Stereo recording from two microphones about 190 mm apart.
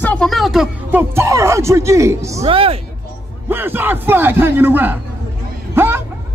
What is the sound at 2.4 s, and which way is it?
Speech, 30° right (ahead or behind).